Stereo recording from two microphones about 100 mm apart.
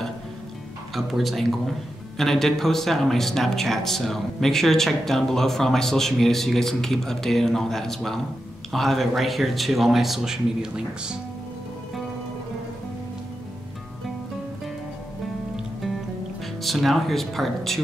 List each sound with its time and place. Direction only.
0.9 s speech: centre (ahead or behind)
15.5 s music: centre (ahead or behind)
16.6 s speech: centre (ahead or behind)